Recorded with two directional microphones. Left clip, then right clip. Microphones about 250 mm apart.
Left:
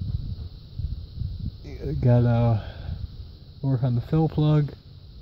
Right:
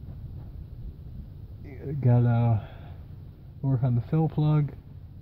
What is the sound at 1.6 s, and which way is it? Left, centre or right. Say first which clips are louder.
Speech: left 4 dB; left.